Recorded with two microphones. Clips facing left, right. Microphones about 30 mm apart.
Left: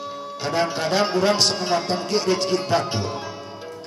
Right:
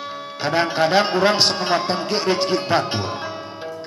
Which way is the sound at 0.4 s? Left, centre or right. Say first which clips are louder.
Right 4 dB; right.